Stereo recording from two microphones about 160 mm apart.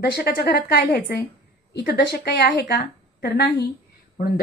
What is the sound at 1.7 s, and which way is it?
A woman's voice, 85° left.